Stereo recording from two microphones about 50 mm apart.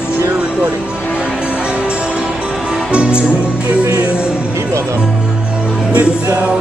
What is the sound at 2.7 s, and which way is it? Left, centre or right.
Music, right.